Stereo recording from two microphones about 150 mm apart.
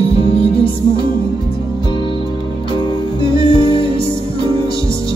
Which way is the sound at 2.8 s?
30° left (ahead or behind).